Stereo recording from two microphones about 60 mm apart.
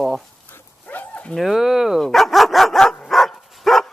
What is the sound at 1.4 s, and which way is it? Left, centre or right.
Speech, centre.